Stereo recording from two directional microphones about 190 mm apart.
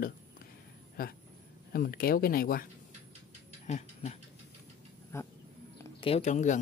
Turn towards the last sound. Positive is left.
turn(degrees=35)  # may be behind; listen again after turning